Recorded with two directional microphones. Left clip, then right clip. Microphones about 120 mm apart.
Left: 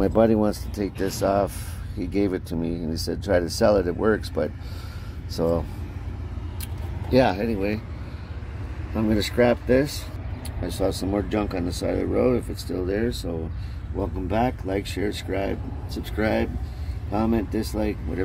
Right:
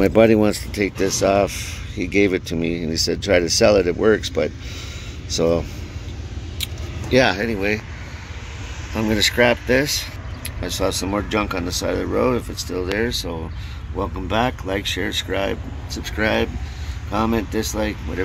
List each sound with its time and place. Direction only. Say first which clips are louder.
0.0 s speech: right 6 dB; 15° right (ahead or behind)
5.3 s speech: right 5 dB; 15° right (ahead or behind)
7.1 s speech: right 4 dB; 5° left (ahead or behind)
8.9 s speech: right 5 dB; 5° left (ahead or behind)
14.3 s speech: right 3 dB; 5° right (ahead or behind)
15.9 s speech: right 4 dB; 10° left (ahead or behind)